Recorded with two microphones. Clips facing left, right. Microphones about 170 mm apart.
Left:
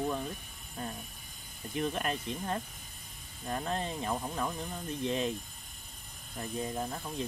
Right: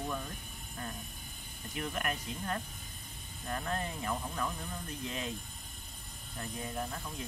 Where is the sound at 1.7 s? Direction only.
25° left (ahead or behind).